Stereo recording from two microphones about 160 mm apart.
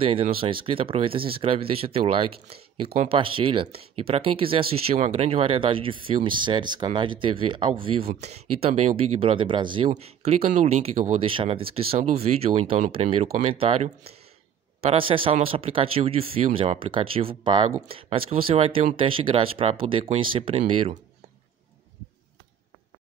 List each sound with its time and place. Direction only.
0.0 s speech: 35° right (ahead or behind)